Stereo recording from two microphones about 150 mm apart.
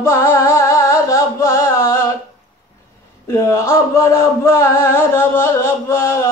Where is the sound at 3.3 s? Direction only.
20° left (ahead or behind).